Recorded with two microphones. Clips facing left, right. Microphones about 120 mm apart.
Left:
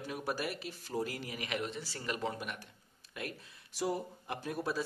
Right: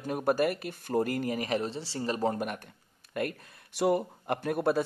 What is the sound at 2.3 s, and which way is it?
Speech, 50° right (ahead or behind).